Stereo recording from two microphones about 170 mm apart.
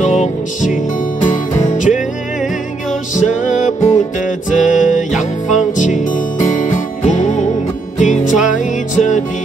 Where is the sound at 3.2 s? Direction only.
45° left (ahead or behind).